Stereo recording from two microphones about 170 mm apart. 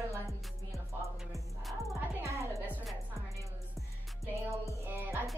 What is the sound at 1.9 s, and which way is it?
Music, 15° right (ahead or behind).